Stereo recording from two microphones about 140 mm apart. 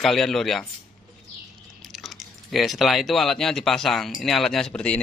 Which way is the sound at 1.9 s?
Centre (ahead or behind).